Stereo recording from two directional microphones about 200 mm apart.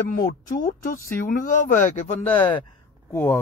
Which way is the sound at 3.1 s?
10° left (ahead or behind).